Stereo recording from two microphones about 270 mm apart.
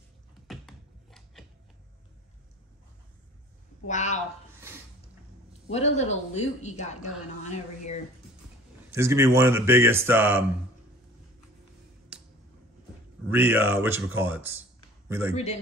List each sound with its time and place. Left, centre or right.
0.5 s a sound: centre
3.8 s a woman's voice: left
5.7 s a woman's voice: left
8.9 s speech: centre
12.1 s a sound: centre
13.3 s a man's voice: centre